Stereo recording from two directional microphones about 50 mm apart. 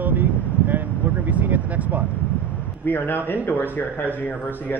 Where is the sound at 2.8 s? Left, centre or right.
Left.